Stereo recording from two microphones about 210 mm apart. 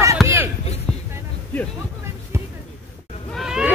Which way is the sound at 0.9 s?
5° left (ahead or behind).